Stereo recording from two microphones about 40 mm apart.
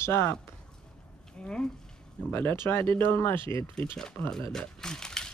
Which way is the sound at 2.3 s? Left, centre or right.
Left.